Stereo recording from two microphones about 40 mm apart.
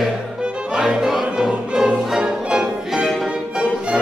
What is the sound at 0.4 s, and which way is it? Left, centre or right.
Music, centre.